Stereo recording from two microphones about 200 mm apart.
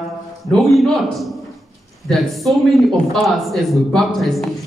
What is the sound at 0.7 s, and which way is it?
A man's voice, centre (ahead or behind).